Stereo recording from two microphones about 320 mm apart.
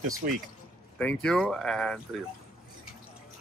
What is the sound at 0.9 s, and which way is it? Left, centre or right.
Speech, centre.